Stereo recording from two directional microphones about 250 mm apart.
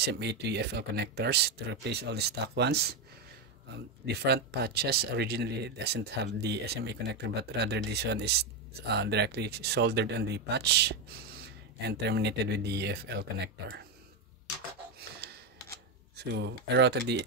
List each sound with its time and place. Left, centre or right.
0.0 s speech: right
4.0 s speech: right
15.0 s a sound: right
16.2 s speech: right